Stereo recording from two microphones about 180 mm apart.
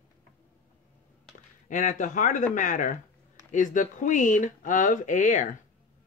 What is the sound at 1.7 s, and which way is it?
Speech, 45° left (ahead or behind).